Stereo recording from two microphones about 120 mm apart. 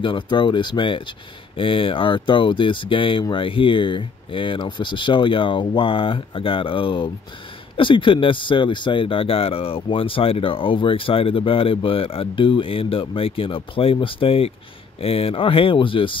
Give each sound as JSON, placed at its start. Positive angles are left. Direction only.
{"t": 0.0, "sound": "speech", "side_deg": 40}